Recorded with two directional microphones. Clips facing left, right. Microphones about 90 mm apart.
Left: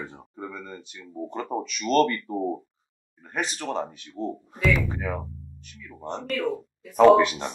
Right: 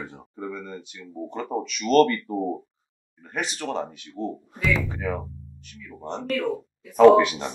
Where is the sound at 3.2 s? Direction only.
35° left (ahead or behind).